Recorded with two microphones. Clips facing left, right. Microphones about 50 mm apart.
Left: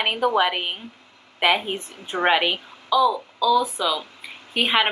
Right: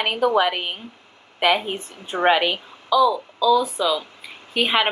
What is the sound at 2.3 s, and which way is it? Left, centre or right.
Speech, centre.